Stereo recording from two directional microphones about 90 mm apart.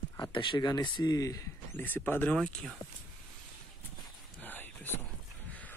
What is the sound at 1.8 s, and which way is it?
Speech, 20° left (ahead or behind).